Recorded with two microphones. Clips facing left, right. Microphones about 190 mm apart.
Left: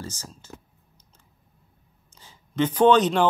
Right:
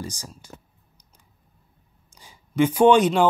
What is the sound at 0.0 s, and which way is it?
Speech, 15° right (ahead or behind).